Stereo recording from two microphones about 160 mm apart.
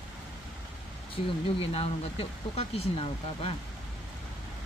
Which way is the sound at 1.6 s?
35° left (ahead or behind).